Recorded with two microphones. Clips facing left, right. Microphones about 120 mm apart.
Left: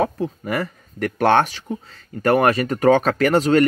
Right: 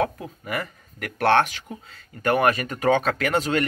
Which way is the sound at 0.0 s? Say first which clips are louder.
Left 4 dB; 35° left (ahead or behind).